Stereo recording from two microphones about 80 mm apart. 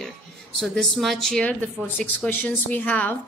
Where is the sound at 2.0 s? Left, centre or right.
Centre.